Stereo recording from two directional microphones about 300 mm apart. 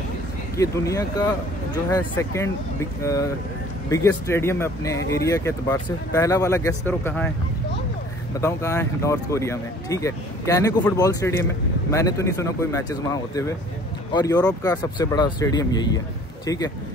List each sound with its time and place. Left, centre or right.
0.6 s speech: centre
8.4 s speech: centre